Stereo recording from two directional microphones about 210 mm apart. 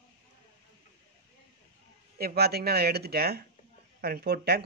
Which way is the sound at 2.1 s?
50° right (ahead or behind).